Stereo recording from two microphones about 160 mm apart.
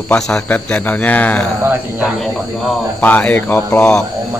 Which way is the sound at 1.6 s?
10° right (ahead or behind).